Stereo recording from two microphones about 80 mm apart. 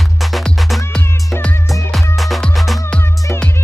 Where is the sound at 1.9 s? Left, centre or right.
Centre.